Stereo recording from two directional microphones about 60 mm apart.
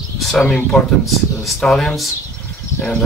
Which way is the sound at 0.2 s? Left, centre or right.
Centre.